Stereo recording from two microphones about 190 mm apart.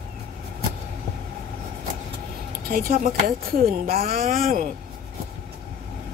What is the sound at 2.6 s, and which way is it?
Speech, 50° right (ahead or behind).